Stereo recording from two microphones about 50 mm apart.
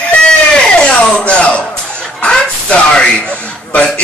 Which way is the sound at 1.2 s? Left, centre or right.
Left.